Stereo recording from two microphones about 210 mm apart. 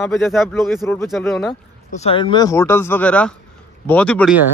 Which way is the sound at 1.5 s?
25° left (ahead or behind).